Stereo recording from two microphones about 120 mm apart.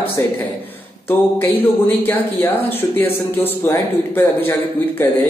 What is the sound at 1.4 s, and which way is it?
A man's voice, 15° left (ahead or behind).